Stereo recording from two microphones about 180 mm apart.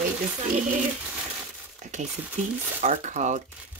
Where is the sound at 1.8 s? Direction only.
40° right (ahead or behind).